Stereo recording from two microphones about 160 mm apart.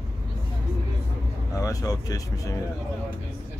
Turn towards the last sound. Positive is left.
turn(degrees=20)  # may be behind; listen again after turning